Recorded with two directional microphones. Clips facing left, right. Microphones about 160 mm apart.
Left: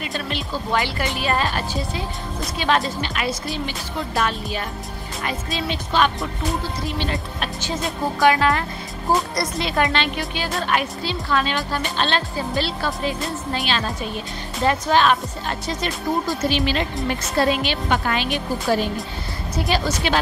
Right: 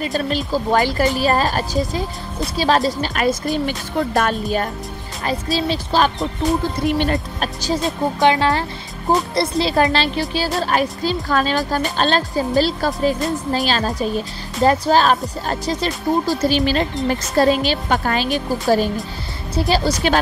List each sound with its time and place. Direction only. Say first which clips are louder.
0.0 s a woman's voice: right 7 dB; 40° right (ahead or behind)
5.2 s a woman's voice: right 6 dB; 35° right (ahead or behind)
6.9 s a woman's voice: right 8 dB; 50° right (ahead or behind)
8.2 s a woman's voice: right 1 dB; 25° right (ahead or behind)